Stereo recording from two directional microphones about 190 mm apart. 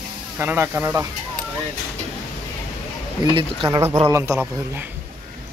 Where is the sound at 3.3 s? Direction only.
20° right (ahead or behind).